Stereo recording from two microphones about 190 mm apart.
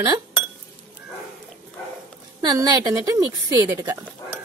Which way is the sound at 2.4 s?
20° right (ahead or behind).